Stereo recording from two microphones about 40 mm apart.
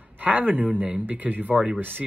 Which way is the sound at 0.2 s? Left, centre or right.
Right.